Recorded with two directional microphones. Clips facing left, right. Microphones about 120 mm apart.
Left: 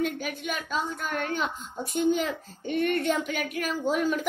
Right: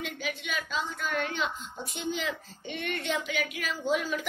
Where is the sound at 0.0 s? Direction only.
45° left (ahead or behind).